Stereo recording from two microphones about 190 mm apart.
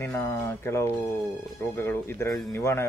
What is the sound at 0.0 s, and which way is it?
Speech, 15° left (ahead or behind).